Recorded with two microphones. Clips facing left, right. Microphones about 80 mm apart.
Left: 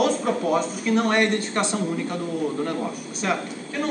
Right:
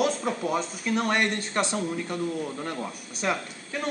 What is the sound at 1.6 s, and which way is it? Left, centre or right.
Speech, right.